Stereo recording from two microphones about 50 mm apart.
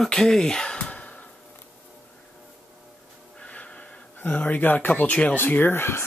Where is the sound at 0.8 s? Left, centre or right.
Left.